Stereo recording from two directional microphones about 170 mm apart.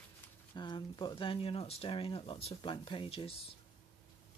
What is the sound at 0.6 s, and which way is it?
Speech, 25° left (ahead or behind).